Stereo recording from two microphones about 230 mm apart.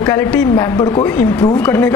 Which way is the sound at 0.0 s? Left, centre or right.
Centre.